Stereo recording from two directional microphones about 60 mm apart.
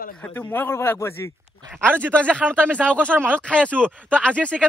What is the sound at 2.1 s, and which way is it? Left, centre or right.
Speech, centre.